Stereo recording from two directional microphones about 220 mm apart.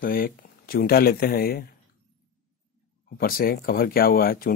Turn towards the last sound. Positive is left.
turn(degrees=40)  # may be behind; listen again after turning